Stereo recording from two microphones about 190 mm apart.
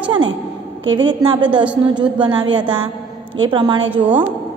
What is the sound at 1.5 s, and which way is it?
Speech, 5° right (ahead or behind).